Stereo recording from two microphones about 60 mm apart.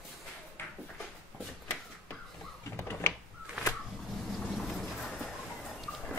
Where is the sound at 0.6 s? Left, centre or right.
Left.